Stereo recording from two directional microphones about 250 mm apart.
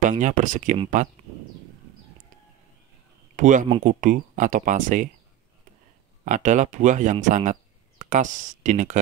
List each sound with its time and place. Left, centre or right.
0.0 s speech: right
3.3 s speech: right
6.2 s speech: right